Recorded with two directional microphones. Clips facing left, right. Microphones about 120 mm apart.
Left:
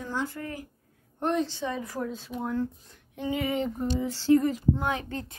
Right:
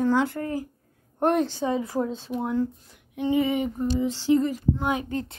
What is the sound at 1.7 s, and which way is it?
Speech, 25° right (ahead or behind).